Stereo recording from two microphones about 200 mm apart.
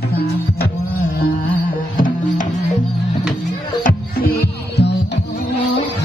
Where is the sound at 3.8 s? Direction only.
50° left (ahead or behind).